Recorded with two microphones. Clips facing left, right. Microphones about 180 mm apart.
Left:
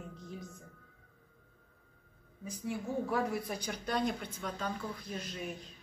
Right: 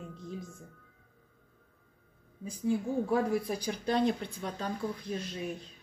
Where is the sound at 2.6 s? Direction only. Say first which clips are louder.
Right 6 dB; 25° right (ahead or behind).